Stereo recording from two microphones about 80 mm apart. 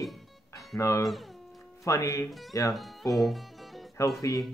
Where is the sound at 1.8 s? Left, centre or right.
Left.